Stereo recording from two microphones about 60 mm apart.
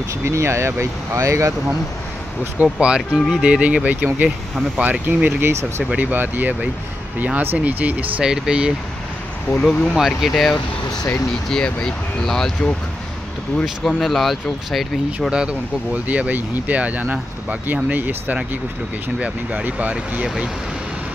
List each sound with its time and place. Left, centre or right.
0.2 s speech: right
2.6 s speech: centre
8.2 s speech: centre
9.5 s speech: centre
9.9 s speech: centre
11.5 s speech: centre
13.8 s speech: centre
15.3 s speech: right